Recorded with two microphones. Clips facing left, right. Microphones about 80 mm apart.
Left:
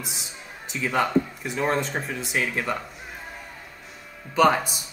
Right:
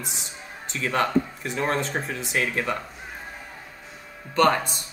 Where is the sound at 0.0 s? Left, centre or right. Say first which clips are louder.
Right 1 dB; centre.